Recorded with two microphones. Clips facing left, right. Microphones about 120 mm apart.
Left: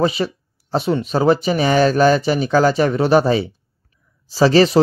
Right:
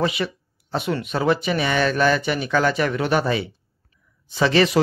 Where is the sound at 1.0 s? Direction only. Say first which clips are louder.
Left 5 dB; 35° left (ahead or behind).